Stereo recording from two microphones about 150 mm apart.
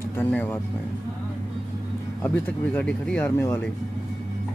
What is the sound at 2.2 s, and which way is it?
Speech, 10° left (ahead or behind).